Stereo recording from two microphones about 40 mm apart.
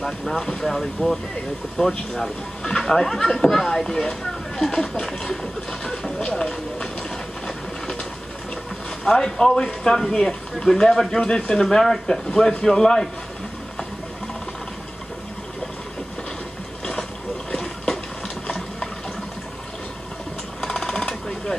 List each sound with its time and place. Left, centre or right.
0.0 s speech: centre
9.0 s speech: centre
11.6 s speech: centre
17.5 s a sound: centre
20.6 s sewing machine: centre
21.1 s a sound: centre